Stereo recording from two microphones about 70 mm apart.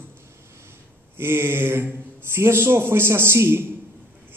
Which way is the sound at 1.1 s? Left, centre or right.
Right.